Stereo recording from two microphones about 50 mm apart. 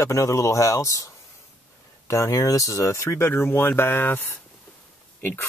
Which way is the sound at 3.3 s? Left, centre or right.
Left.